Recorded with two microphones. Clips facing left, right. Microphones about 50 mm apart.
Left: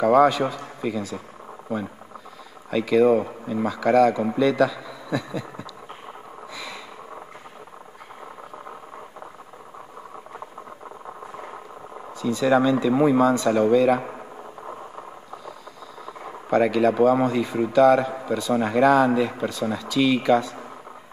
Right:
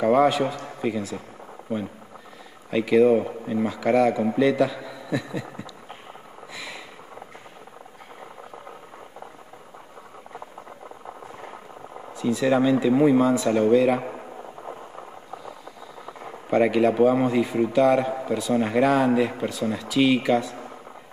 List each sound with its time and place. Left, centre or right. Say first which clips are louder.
0.0 s speech: left 2 dB; centre
2.7 s a man's voice: even; centre
6.5 s a sound: even; centre
12.2 s speech: left 1 dB; centre
16.4 s speech: even; centre